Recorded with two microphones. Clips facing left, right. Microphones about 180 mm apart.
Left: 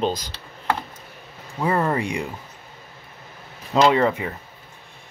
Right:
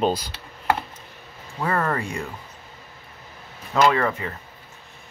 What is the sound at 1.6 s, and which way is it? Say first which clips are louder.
Speech: left 3 dB; 15° left (ahead or behind).